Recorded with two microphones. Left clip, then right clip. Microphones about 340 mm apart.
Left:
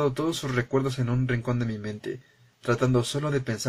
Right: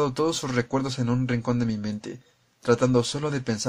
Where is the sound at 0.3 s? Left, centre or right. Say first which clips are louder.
Right 1 dB; right.